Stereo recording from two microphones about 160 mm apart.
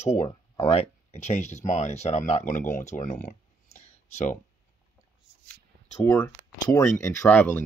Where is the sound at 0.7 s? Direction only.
45° left (ahead or behind).